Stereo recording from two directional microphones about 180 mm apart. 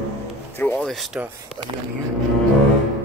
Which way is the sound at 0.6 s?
10° left (ahead or behind).